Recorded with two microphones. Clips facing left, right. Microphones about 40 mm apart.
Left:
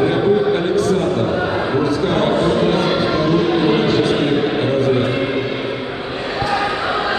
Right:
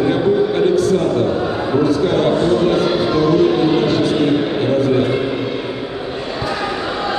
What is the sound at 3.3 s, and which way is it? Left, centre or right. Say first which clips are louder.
Music: right 2 dB; centre.